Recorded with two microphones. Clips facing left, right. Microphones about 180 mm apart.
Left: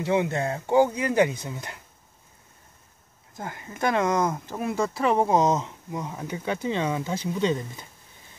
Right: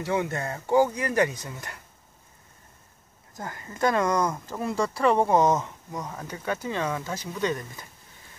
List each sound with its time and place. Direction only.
0.0 s speech: 20° left (ahead or behind)
3.3 s speech: 20° left (ahead or behind)
5.9 s speech: 10° left (ahead or behind); by 7.6 s 25° left (ahead or behind)